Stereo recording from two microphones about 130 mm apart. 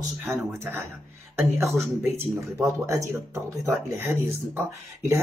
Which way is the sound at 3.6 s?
20° right (ahead or behind).